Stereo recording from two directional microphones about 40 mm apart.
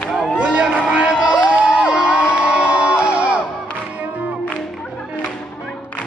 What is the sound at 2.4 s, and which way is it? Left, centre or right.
Crowd, right.